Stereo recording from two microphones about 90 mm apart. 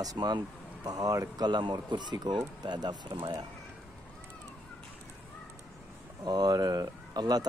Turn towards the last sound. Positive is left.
turn(degrees=-45)  # may be behind; listen again after turning